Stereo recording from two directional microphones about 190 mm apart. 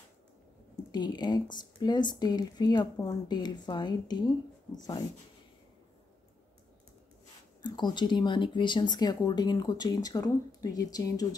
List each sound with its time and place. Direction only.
0.9 s speech: 20° left (ahead or behind)
7.6 s speech: 25° left (ahead or behind)